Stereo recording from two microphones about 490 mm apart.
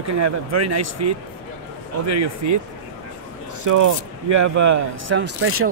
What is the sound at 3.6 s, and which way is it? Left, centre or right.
Speech, right.